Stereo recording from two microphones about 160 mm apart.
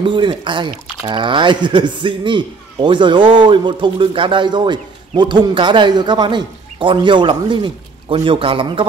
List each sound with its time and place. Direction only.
0.0 s speech: 30° right (ahead or behind)